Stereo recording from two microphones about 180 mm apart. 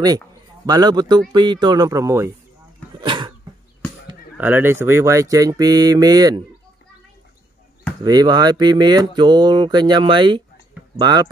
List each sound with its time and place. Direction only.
0.7 s speech: 20° right (ahead or behind)
3.0 s cough: 25° right (ahead or behind)
4.4 s speech: 10° right (ahead or behind)
8.0 s speech: 20° right (ahead or behind)